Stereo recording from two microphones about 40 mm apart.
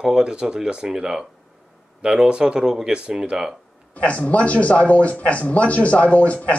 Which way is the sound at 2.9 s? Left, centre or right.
Right.